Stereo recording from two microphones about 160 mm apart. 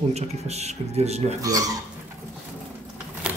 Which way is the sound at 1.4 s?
20° right (ahead or behind).